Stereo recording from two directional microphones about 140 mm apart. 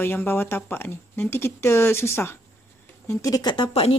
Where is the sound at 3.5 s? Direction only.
40° left (ahead or behind).